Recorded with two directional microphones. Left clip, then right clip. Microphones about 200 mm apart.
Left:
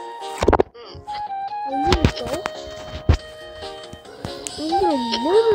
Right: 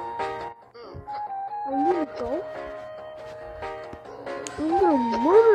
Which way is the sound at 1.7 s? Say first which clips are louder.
Left 4 dB; 20° left (ahead or behind).